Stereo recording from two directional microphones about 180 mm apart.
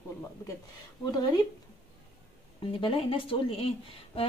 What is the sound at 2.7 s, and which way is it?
A woman's voice, 30° left (ahead or behind).